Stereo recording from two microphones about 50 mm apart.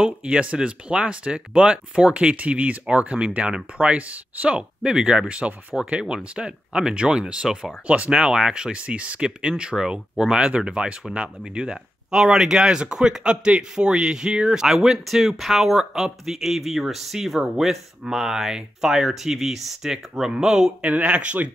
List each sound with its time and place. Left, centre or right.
0.0 s speech: right
20.8 s speech: right